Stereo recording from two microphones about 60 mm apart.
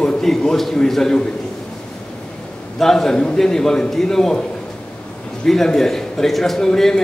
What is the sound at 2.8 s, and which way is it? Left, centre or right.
A man's voice, centre.